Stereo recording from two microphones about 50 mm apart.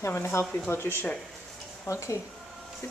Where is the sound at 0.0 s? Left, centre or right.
Left.